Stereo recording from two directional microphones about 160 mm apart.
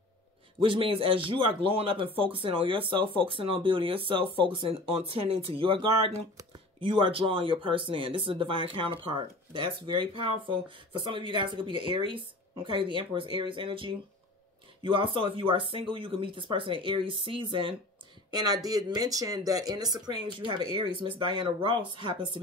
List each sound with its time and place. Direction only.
0.6 s speech: 35° right (ahead or behind)